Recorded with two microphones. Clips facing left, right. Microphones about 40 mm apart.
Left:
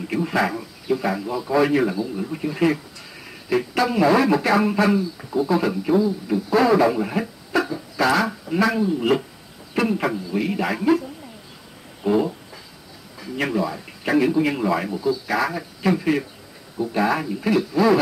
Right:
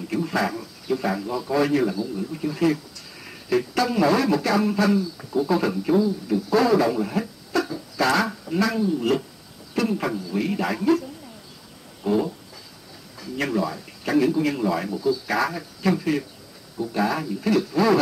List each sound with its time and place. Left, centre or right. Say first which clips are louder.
0.0 s speech: left 2 dB; left
5.3 s speech: left 1 dB; centre
8.0 s speech: left 2 dB; centre
15.2 s speech: left 1 dB; centre
15.5 s speech: left 2 dB; centre